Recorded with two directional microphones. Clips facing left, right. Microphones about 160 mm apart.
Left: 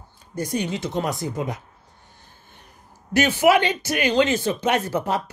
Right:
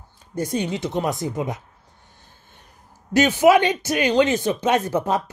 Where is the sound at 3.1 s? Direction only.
20° right (ahead or behind).